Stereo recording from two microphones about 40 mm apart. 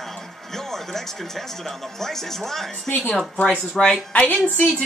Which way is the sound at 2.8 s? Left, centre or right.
Left.